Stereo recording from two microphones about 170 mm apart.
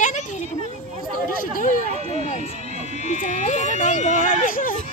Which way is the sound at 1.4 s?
50° left (ahead or behind).